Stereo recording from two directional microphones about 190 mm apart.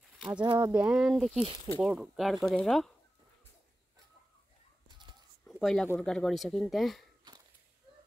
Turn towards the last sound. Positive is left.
turn(degrees=-25)  # may be behind; listen again after turning